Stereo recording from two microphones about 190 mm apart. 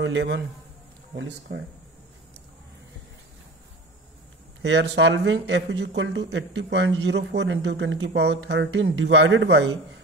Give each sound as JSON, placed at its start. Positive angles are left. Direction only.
{"t": 0.0, "sound": "a man's voice", "side_deg": -65}
{"t": 4.6, "sound": "speech", "side_deg": -65}